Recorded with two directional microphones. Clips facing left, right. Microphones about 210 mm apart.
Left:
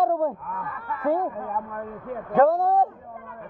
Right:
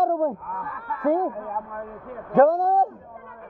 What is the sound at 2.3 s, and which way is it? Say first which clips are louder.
Speech: right 2 dB; 45° right (ahead or behind).